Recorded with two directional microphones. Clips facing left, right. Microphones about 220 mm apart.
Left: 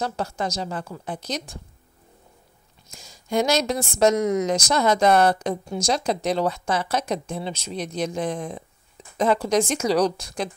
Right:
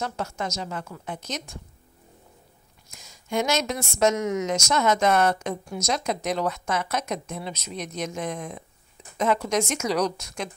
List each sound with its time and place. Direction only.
0.0 s a woman's voice: 35° left (ahead or behind)
2.9 s a woman's voice: 30° left (ahead or behind)